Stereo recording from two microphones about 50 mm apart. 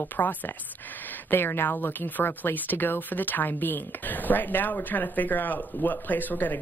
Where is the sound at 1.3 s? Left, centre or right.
Left.